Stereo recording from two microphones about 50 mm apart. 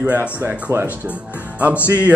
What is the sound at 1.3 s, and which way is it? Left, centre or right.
Music, right.